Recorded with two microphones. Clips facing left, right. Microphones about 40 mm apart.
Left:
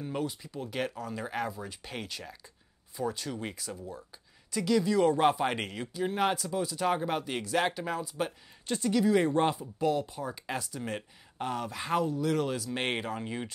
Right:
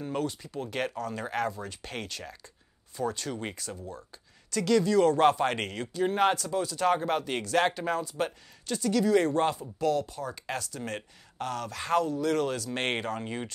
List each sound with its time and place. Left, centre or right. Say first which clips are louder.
0.2 s speech: right 2 dB; centre
0.9 s speech: right 3 dB; centre
3.3 s speech: right 2 dB; centre
3.5 s speech: right 1 dB; centre
6.0 s speech: right 4 dB; centre
6.3 s speech: right 2 dB; centre
6.9 s speech: right 4 dB; centre
8.6 s speech: right 1 dB; left
8.9 s speech: right 1 dB; centre
13.2 s speech: right 1 dB; centre